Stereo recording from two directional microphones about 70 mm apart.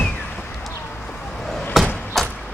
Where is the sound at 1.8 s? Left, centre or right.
Centre.